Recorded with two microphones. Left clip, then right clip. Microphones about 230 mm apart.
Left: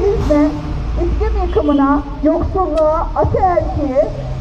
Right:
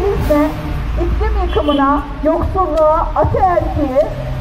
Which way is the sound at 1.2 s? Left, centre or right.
Right.